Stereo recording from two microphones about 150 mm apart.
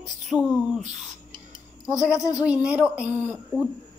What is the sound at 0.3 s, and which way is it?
Speech, 5° right (ahead or behind).